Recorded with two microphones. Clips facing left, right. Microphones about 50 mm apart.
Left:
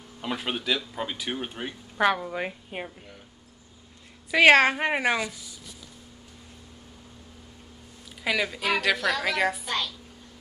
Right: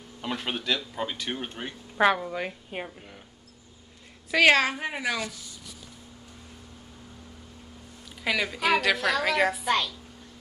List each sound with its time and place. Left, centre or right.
0.2 s speech: centre
2.3 s a woman's voice: centre
4.4 s a woman's voice: left
8.2 s speech: centre